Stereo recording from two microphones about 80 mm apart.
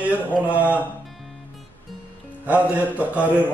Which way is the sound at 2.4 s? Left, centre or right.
Right.